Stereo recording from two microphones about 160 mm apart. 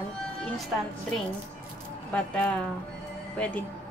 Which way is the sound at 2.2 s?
5° left (ahead or behind).